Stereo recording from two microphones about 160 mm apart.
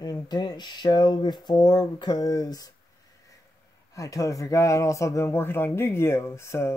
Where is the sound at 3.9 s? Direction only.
20° left (ahead or behind).